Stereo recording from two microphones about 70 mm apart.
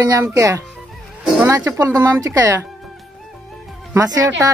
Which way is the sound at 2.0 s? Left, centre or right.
Right.